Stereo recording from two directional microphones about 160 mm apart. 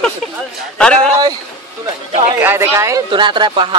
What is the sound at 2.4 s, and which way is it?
Speech, 15° right (ahead or behind).